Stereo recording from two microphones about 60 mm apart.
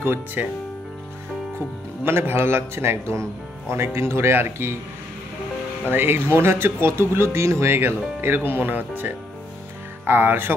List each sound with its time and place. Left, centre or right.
0.0 s speech: right
2.0 s a man's voice: right
5.9 s speech: right